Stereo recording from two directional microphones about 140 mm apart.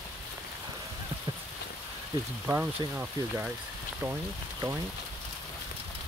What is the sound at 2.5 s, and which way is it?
Speech, 10° right (ahead or behind).